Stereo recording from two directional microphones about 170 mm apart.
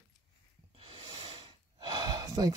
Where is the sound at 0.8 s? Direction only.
30° right (ahead or behind).